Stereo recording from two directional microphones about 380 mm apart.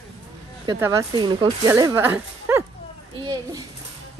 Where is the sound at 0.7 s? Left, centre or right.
Centre.